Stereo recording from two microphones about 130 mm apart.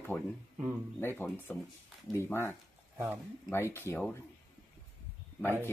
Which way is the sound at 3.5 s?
20° left (ahead or behind).